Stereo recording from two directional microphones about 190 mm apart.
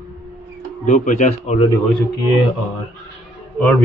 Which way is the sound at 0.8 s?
40° left (ahead or behind).